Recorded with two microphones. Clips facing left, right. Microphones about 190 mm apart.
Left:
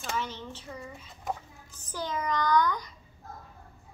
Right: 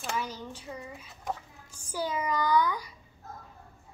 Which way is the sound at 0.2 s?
10° right (ahead or behind).